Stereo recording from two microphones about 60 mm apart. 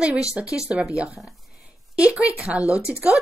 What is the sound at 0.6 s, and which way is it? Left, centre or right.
Speech, centre.